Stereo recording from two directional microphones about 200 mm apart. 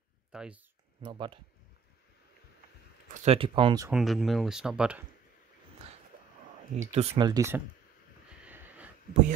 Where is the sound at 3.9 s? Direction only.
Centre (ahead or behind).